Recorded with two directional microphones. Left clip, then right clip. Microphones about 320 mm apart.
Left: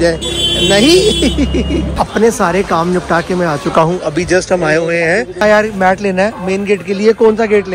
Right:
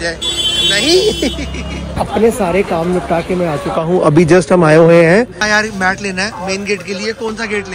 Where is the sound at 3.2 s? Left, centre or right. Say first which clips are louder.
Left 2 dB; centre.